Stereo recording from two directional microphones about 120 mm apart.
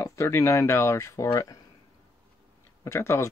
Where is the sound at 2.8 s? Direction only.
25° left (ahead or behind).